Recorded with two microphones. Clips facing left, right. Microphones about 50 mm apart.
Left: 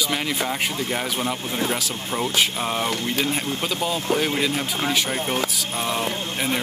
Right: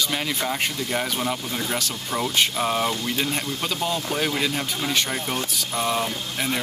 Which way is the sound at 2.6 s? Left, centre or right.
Centre.